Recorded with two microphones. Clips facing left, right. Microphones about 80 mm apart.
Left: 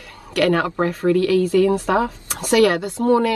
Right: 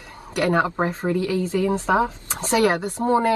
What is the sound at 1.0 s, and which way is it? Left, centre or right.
Speech, left.